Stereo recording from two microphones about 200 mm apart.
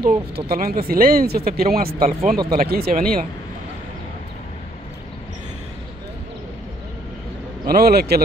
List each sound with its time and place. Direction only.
0.0 s speech: 45° right (ahead or behind)
7.6 s speech: 50° right (ahead or behind)